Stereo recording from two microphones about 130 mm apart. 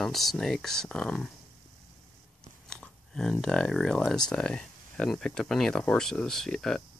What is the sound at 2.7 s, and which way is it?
Speech, 5° left (ahead or behind).